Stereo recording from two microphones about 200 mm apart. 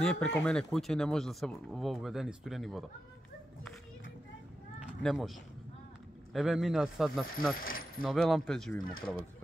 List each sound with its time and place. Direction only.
0.0 s speech: 5° left (ahead or behind)
4.7 s a sound: 5° right (ahead or behind)
6.3 s speech: centre (ahead or behind)
7.5 s mechanisms: 45° left (ahead or behind)
8.0 s speech: centre (ahead or behind)